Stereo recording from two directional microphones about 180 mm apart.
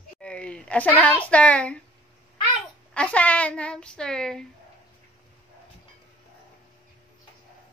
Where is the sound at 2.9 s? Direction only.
5° left (ahead or behind).